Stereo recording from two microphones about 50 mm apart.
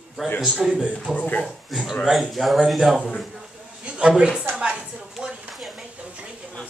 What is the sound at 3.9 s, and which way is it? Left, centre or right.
Speech, centre.